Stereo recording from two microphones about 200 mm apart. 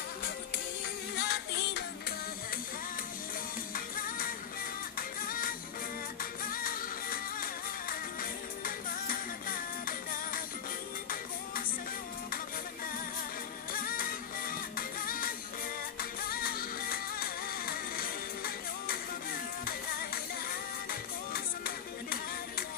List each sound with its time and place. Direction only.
1.1 s music: 55° left (ahead or behind)
4.9 s music: 45° left (ahead or behind)
6.5 s music: 45° left (ahead or behind)
13.7 s music: 45° left (ahead or behind)
21.3 s music: 50° left (ahead or behind)